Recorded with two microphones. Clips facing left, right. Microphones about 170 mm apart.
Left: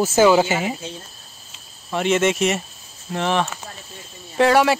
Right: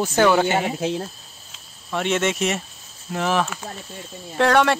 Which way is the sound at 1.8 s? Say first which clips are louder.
Left 3 dB; centre (ahead or behind).